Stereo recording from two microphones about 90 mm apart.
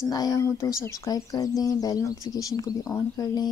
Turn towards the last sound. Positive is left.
turn(degrees=40)  # may be behind; listen again after turning